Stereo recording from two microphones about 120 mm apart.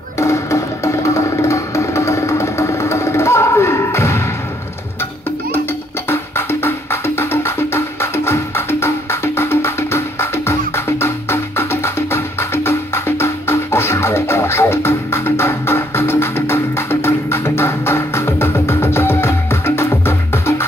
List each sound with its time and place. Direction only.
0.2 s music: 25° left (ahead or behind)
6.0 s music: 20° left (ahead or behind)